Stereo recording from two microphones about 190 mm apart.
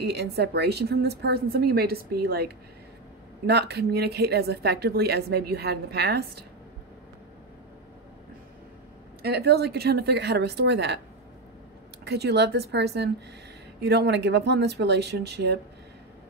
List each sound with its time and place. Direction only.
0.0 s a woman's voice: 60° right (ahead or behind)
9.2 s a woman's voice: 55° right (ahead or behind)
12.0 s a woman's voice: 60° right (ahead or behind)